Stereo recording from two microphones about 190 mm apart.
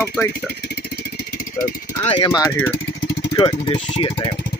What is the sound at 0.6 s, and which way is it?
Vehicle, 55° left (ahead or behind).